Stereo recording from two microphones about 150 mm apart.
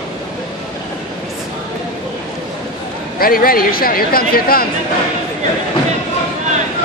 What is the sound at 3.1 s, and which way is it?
Speech, 75° left (ahead or behind).